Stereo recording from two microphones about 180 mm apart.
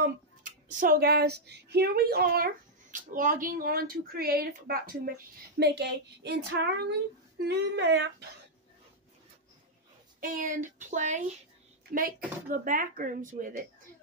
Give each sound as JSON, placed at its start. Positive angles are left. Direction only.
{"t": 0.4, "sound": "speech", "side_deg": -45}
{"t": 10.2, "sound": "speech", "side_deg": -50}